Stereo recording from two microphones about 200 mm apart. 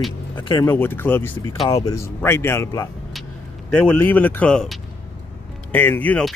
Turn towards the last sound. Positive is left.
turn(degrees=10)  # may be behind; listen again after turning